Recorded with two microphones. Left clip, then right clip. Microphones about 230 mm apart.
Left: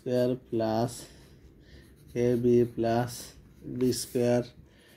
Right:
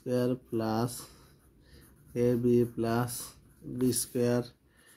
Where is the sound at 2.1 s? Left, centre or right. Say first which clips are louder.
Left 2 dB; centre.